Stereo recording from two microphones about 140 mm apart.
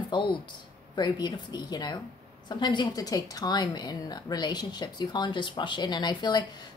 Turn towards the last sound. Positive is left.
turn(degrees=30)  # may be behind; listen again after turning